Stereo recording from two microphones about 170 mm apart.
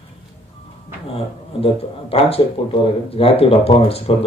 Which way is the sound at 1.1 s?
35° left (ahead or behind).